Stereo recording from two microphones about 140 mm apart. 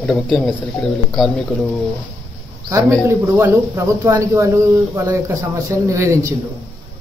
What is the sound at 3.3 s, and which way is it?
Speech, 20° right (ahead or behind).